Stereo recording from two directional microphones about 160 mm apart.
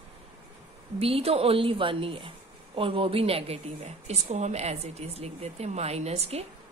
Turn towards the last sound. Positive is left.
turn(degrees=-40)  # may be behind; listen again after turning